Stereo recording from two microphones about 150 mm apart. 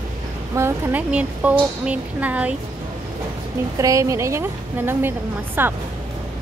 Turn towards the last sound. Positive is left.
turn(degrees=-15)  # may be behind; listen again after turning